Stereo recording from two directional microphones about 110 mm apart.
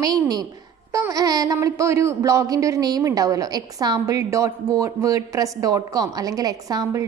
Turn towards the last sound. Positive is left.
turn(degrees=-30)  # may be behind; listen again after turning